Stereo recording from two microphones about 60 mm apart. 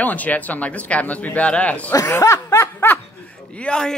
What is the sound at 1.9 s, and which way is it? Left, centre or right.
Speech, left.